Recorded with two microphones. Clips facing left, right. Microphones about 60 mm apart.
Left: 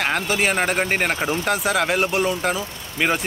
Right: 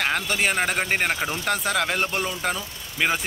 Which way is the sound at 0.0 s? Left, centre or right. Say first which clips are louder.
Left 3 dB; centre.